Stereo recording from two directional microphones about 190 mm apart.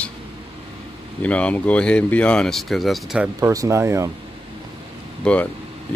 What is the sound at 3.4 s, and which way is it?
Speech, 15° right (ahead or behind).